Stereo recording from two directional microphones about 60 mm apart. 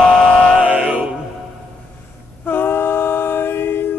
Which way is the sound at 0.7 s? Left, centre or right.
Right.